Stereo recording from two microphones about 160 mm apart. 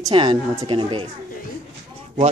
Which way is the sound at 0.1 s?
30° right (ahead or behind).